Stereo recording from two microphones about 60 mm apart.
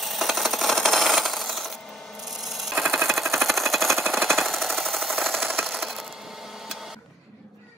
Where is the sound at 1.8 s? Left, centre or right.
Centre.